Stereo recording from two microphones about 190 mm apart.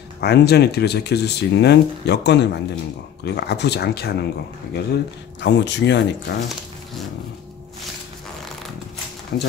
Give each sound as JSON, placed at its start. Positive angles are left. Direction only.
{"t": 0.2, "sound": "speech", "side_deg": 60}
{"t": 5.4, "sound": "speech", "side_deg": 70}
{"t": 9.3, "sound": "speech", "side_deg": 65}